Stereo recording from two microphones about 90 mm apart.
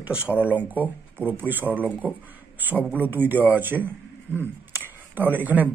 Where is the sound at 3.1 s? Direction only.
20° right (ahead or behind).